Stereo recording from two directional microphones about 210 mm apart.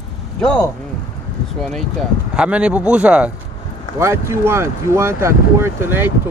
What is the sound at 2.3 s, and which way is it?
Speech, 5° right (ahead or behind).